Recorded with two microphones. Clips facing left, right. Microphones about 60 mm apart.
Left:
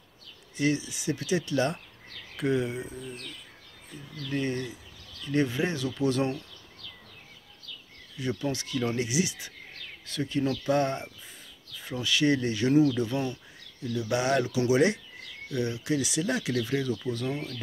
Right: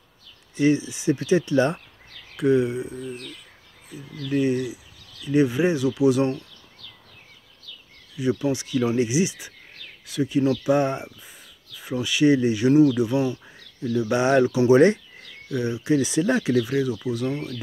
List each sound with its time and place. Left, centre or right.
0.6 s speech: right
2.3 s speech: centre
8.2 s speech: centre
10.0 s speech: centre
10.6 s speech: centre
13.8 s speech: right
14.7 s speech: right
15.5 s speech: right
16.6 s speech: centre